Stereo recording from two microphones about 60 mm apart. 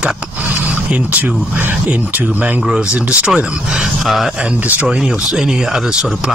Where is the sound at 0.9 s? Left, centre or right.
Right.